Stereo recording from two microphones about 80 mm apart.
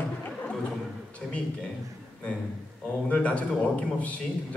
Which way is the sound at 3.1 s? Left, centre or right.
Centre.